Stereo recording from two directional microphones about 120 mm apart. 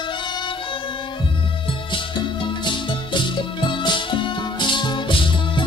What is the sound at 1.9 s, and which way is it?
Music, 40° left (ahead or behind).